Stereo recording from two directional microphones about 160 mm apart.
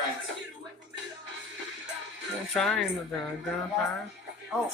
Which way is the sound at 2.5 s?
5° left (ahead or behind).